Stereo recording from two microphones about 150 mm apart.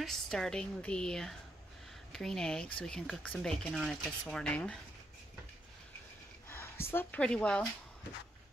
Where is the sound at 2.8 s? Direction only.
5° left (ahead or behind).